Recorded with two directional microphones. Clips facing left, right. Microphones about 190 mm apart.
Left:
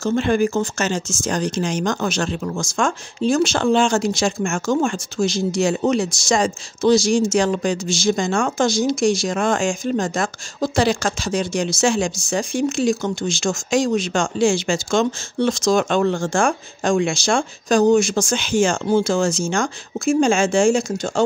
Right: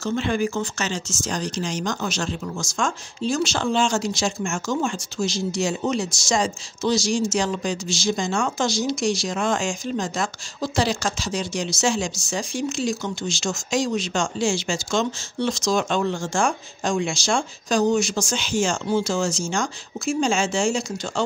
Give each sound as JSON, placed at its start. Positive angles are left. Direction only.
{"t": 0.0, "sound": "speech", "side_deg": 50}